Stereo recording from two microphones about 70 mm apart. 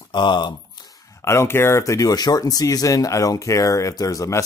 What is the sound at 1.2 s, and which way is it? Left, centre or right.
Speech, left.